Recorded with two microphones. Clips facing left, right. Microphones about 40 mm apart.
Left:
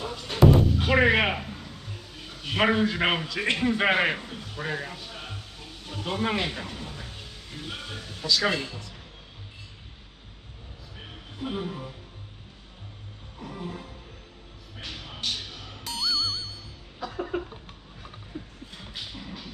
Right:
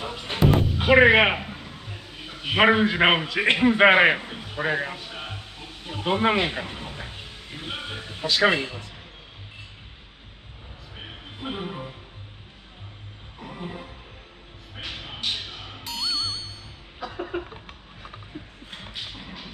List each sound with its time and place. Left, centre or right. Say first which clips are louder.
0.0 s music: left 2 dB; right
11.0 s music: even; right
13.4 s music: right 1 dB; right
14.8 s a sound: right 4 dB; right
15.2 s music: right 2 dB; right
15.8 s music: left 1 dB; centre
17.0 s a sound: even; right
18.7 s music: right 4 dB; right